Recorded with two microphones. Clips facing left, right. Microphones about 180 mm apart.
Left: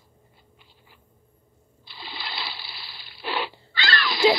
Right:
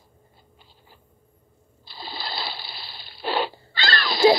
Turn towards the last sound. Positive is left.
turn(degrees=-35)  # may be behind; listen again after turning